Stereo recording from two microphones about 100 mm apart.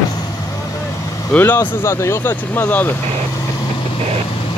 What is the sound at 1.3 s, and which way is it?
Speech, 20° left (ahead or behind).